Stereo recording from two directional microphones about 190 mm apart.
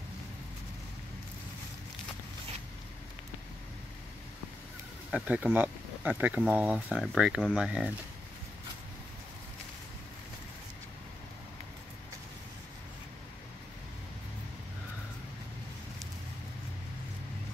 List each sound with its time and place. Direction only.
5.1 s speech: 5° right (ahead or behind)